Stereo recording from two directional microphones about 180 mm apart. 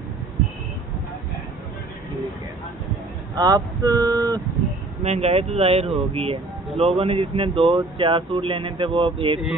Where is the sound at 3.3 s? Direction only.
20° right (ahead or behind).